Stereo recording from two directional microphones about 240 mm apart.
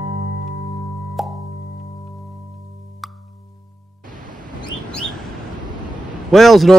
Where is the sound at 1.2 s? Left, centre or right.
Centre.